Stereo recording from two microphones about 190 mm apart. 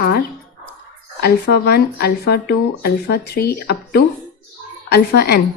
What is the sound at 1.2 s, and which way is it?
Speech, 55° left (ahead or behind).